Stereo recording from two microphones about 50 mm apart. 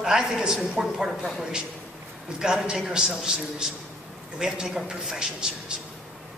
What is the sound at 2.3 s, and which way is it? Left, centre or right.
A man's voice, centre.